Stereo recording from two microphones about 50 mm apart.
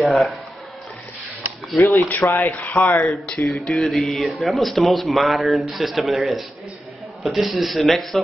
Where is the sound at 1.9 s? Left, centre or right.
Left.